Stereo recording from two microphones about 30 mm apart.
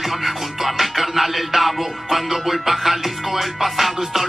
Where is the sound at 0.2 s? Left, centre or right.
Centre.